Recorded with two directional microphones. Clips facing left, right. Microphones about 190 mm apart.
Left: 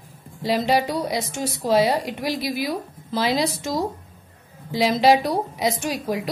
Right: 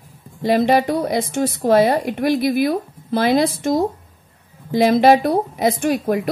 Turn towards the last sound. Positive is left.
turn(degrees=-55)  # may be behind; listen again after turning